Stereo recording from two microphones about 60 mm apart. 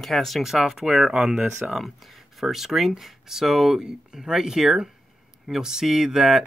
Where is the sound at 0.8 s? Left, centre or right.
Centre.